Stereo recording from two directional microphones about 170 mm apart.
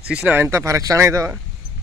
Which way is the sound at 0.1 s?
10° right (ahead or behind).